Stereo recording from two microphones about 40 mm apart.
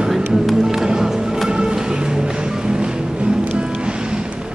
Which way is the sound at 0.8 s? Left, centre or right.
Centre.